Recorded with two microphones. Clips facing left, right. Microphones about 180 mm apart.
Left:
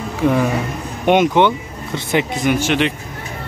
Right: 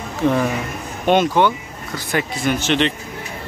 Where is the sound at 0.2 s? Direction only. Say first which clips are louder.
Left 2 dB; 10° left (ahead or behind).